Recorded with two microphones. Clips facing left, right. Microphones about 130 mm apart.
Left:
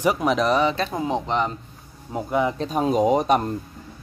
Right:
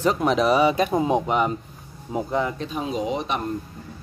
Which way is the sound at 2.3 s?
15° left (ahead or behind).